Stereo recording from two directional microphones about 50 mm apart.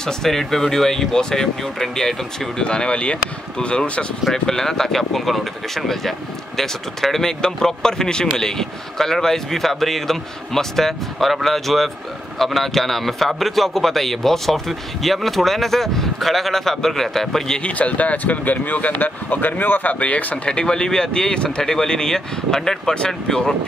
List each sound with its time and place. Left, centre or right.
0.0 s speech: centre; by 4.1 s left
4.3 s speech: centre
17.6 s speech: left
20.4 s speech: centre